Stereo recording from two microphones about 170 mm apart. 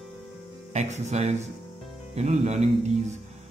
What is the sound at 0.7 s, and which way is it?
Speech, 40° right (ahead or behind).